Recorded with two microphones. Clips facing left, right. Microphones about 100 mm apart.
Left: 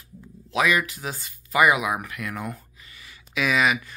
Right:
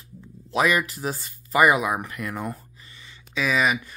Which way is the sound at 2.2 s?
Centre (ahead or behind).